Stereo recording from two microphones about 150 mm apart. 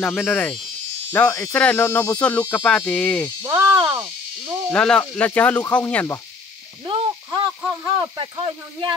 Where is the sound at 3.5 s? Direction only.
25° right (ahead or behind).